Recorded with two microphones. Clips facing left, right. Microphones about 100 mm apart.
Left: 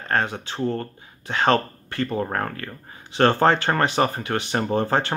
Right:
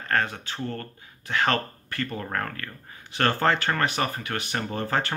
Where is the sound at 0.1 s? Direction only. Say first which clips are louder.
Left 2 dB; 20° left (ahead or behind).